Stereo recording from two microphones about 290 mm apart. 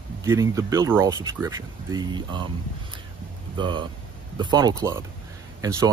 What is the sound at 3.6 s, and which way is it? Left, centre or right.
Speech, centre.